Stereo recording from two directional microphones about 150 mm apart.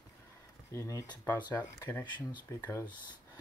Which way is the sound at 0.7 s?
20° left (ahead or behind).